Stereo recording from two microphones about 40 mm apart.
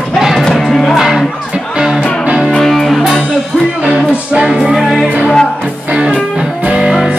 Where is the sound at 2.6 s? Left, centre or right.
Centre.